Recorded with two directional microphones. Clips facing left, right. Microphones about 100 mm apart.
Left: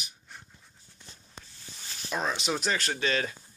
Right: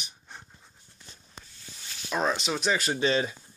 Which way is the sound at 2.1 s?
5° right (ahead or behind).